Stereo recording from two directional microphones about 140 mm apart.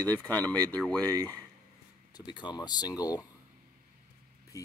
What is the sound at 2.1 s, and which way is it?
Speech, 35° left (ahead or behind).